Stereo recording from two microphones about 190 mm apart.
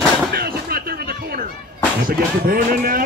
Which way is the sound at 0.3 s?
55° right (ahead or behind).